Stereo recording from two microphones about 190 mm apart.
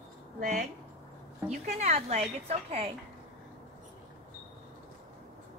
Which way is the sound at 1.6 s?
35° right (ahead or behind).